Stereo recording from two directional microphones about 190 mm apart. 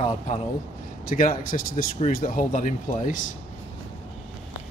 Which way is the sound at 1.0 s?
45° left (ahead or behind).